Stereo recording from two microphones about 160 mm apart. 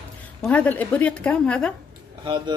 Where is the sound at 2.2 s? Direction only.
30° right (ahead or behind).